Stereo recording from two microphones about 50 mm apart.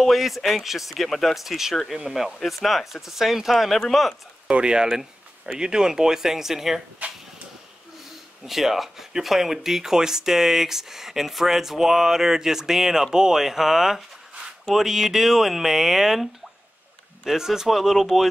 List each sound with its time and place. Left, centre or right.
0.0 s speech: centre
4.5 s speech: centre
7.0 s a sound: right
8.5 s speech: centre